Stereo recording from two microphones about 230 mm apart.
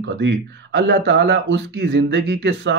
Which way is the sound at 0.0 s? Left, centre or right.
Right.